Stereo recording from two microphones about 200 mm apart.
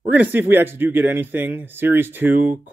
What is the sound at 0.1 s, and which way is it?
Speech, 10° right (ahead or behind).